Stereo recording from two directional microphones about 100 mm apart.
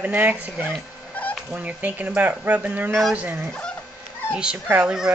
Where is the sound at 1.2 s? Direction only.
15° left (ahead or behind).